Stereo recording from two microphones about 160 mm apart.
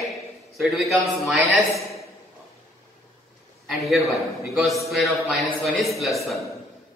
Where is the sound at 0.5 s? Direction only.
Centre (ahead or behind).